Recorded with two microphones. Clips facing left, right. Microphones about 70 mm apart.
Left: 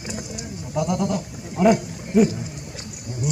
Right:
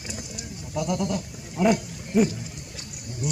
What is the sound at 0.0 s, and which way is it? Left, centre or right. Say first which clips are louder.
Pigeon: left 5 dB; centre.